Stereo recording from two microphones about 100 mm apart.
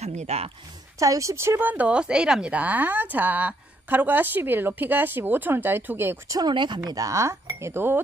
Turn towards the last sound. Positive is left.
turn(degrees=-25)  # may be behind; listen again after turning